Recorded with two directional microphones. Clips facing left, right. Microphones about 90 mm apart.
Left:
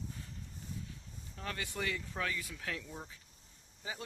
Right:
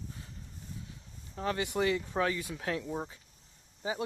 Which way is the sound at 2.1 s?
30° right (ahead or behind).